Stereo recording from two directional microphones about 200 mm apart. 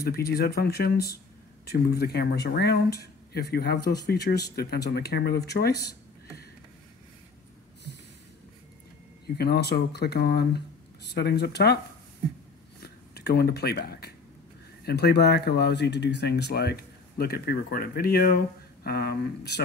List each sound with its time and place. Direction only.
0.1 s speech: 50° left (ahead or behind)
9.4 s speech: 55° left (ahead or behind)
12.8 s a sound: 55° left (ahead or behind)
14.9 s speech: 55° left (ahead or behind)